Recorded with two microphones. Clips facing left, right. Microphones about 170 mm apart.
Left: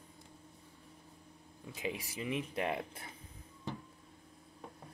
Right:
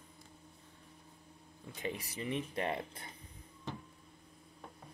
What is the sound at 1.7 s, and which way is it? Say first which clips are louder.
Speech: left 1 dB; 5° left (ahead or behind).